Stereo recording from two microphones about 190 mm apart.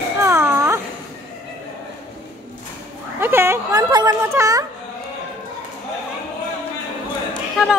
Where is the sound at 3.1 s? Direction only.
10° right (ahead or behind).